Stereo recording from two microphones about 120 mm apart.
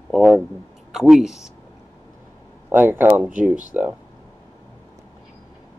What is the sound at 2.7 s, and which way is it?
Speech, 15° right (ahead or behind).